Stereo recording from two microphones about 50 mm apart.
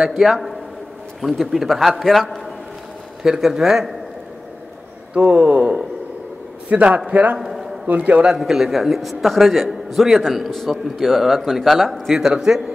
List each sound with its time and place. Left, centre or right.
0.0 s a man's voice: centre
3.2 s speech: centre
5.1 s a man's voice: right
7.3 s a sound: centre
7.8 s a man's voice: right
8.3 s a man's voice: centre